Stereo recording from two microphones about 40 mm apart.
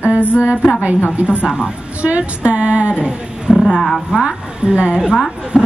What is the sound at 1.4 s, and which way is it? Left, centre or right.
Speech, centre.